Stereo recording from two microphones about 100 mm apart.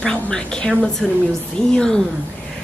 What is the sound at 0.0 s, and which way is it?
A woman's voice, 10° left (ahead or behind).